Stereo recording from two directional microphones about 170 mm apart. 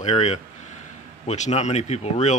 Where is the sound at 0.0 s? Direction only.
40° left (ahead or behind).